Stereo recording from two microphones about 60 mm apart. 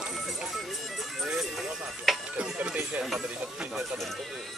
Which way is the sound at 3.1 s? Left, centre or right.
Centre.